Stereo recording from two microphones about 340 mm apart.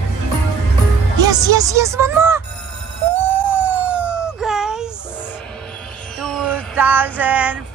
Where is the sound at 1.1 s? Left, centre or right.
Centre.